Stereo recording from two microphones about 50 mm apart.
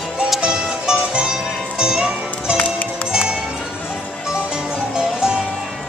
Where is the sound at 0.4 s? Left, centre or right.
Centre.